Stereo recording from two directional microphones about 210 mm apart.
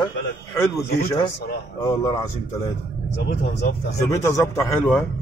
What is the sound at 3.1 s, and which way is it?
Speech, 55° left (ahead or behind).